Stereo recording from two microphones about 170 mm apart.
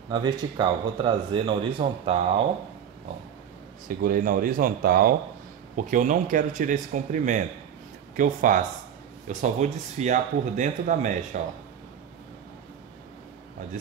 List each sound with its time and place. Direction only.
0.1 s speech: 25° right (ahead or behind)
4.0 s speech: 55° right (ahead or behind)
5.9 s speech: 50° right (ahead or behind)